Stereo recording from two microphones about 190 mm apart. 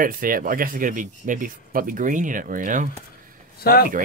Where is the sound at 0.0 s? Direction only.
45° right (ahead or behind).